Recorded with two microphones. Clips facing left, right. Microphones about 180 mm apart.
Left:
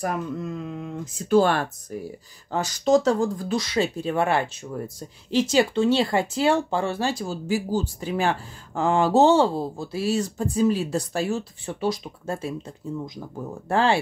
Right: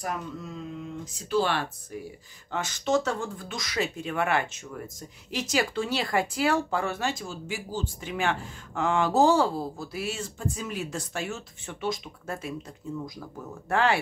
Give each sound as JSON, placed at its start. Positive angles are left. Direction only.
{"t": 0.0, "sound": "speech", "side_deg": 55}